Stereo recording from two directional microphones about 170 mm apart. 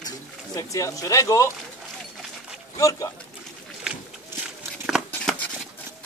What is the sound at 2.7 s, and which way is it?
Speech, 20° left (ahead or behind).